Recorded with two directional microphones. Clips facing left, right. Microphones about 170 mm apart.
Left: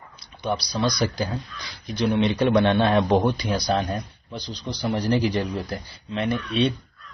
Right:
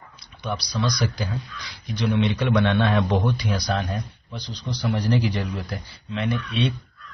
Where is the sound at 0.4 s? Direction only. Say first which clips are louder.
Left 3 dB; 30° left (ahead or behind).